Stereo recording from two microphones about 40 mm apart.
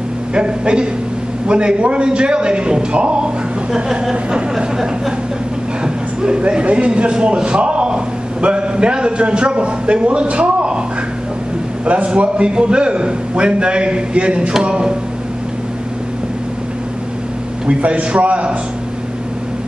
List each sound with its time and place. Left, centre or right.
0.3 s a man's voice: right
3.7 s speech: centre
6.2 s a man's voice: right
11.8 s a man's voice: right
17.6 s a man's voice: right